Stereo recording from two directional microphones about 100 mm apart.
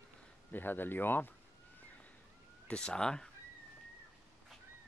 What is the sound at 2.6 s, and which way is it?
Speech, 10° left (ahead or behind).